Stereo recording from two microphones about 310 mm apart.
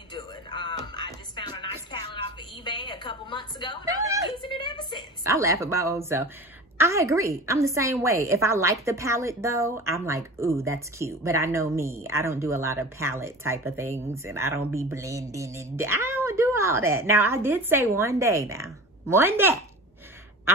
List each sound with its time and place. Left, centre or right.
0.1 s music: centre
2.6 s a sound: centre
5.2 s a woman's voice: centre